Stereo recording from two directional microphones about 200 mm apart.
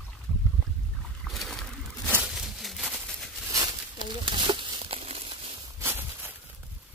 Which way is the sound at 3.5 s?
20° right (ahead or behind).